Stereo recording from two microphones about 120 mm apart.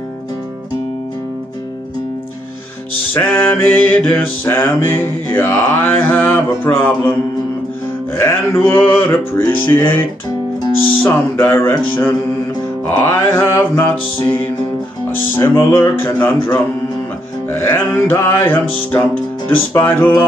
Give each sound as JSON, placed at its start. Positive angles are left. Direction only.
{"t": 3.2, "sound": "music", "side_deg": 15}
{"t": 8.2, "sound": "music", "side_deg": 20}
{"t": 11.0, "sound": "music", "side_deg": 15}
{"t": 12.9, "sound": "music", "side_deg": 20}